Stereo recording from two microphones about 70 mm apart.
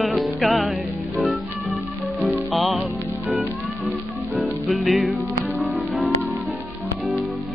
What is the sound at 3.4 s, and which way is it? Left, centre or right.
Music, centre.